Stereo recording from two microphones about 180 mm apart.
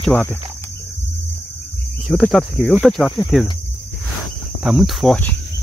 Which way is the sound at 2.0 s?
Centre (ahead or behind).